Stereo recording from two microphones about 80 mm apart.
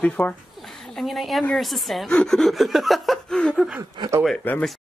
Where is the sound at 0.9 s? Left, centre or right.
Centre.